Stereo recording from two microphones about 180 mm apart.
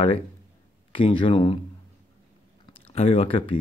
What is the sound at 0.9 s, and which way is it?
Speech, 30° left (ahead or behind).